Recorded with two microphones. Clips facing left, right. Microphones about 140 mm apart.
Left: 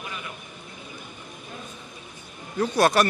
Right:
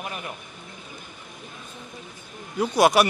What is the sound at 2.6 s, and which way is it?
Speech, 15° right (ahead or behind).